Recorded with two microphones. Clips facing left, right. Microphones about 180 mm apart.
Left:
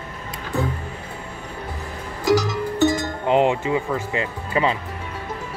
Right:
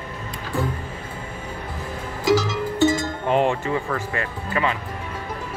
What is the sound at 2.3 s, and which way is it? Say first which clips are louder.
Music: left 1 dB; 20° left (ahead or behind).